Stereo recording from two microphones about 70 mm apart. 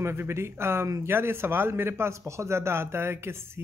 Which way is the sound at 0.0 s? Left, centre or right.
Right.